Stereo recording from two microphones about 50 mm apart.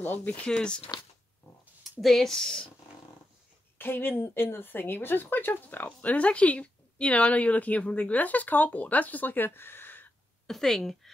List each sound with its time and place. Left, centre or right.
0.0 s speech: left
0.5 s speech: centre
2.0 s speech: centre
3.7 s speech: left
10.4 s speech: centre